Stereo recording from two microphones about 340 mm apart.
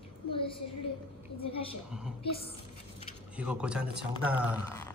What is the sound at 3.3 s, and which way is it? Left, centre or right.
A man's voice, centre.